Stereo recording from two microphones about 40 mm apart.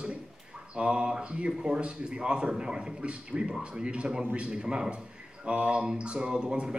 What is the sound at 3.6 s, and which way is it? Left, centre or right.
Speech, right.